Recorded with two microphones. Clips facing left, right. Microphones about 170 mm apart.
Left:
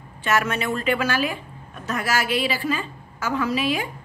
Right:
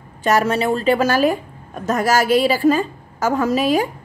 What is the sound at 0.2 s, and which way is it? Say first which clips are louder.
A woman's voice: right 6 dB; 35° right (ahead or behind).